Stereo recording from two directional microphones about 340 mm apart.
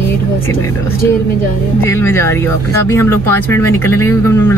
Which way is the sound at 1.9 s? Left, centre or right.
Centre.